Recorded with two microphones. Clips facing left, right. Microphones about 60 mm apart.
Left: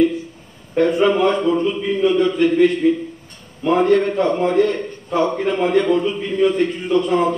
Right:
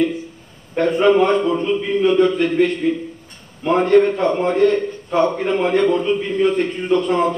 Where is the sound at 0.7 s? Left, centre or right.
Centre.